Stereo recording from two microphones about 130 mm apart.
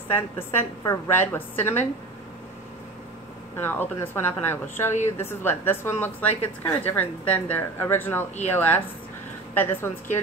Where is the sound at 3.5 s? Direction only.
15° left (ahead or behind).